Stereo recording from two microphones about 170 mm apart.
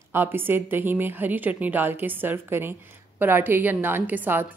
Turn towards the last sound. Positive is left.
turn(degrees=-10)  # may be behind; listen again after turning